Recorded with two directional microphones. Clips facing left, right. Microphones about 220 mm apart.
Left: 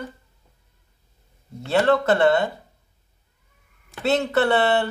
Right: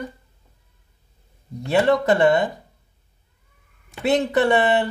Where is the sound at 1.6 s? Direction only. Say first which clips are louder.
Right 1 dB; 15° right (ahead or behind).